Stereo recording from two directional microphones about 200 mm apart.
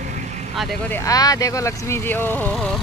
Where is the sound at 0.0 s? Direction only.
35° right (ahead or behind).